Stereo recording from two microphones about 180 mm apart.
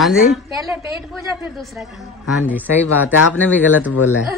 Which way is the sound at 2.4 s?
10° right (ahead or behind).